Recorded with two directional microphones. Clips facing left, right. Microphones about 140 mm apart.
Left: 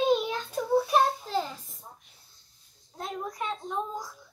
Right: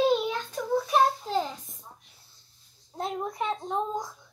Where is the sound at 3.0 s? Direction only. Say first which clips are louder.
Right 4 dB; 25° right (ahead or behind).